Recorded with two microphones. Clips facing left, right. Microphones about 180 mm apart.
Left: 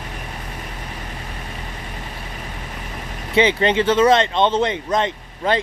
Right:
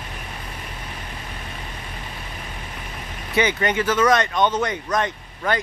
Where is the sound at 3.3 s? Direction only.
25° left (ahead or behind).